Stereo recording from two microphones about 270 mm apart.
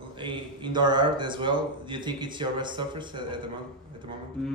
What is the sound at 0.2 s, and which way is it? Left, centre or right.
Speech, centre.